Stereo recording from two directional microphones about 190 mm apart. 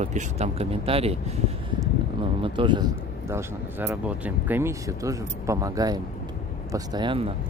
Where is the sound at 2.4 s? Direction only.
25° right (ahead or behind).